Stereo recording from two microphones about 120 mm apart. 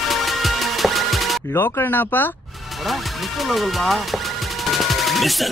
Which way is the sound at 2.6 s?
Centre (ahead or behind).